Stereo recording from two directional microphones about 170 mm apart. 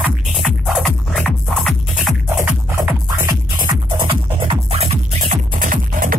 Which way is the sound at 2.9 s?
10° right (ahead or behind).